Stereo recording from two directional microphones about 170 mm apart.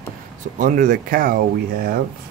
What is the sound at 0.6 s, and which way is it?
Speech, 45° right (ahead or behind).